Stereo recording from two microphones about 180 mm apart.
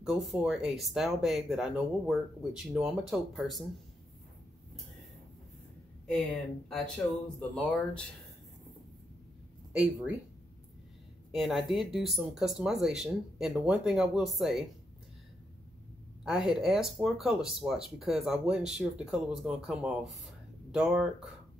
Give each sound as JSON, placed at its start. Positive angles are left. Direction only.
{"t": 0.0, "sound": "speech", "side_deg": 0}
{"t": 7.3, "sound": "speech", "side_deg": 5}
{"t": 9.7, "sound": "speech", "side_deg": -5}
{"t": 11.3, "sound": "speech", "side_deg": 0}
{"t": 16.3, "sound": "speech", "side_deg": 0}